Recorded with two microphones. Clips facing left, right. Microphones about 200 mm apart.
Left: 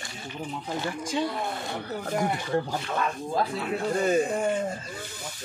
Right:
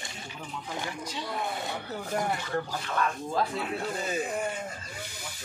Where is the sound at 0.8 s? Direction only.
50° left (ahead or behind).